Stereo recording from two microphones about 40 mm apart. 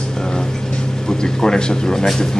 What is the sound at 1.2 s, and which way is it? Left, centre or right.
A man's voice, centre.